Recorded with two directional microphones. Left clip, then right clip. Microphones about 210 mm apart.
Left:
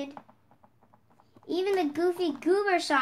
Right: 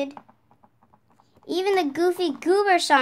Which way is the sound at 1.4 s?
50° right (ahead or behind).